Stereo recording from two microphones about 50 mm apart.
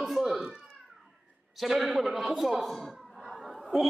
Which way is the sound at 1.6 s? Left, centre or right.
Centre.